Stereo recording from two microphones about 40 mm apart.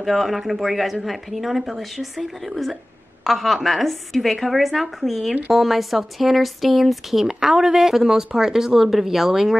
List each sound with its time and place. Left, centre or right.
0.0 s a woman's voice: centre